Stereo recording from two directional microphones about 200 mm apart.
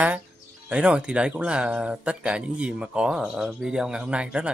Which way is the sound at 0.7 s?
5° right (ahead or behind).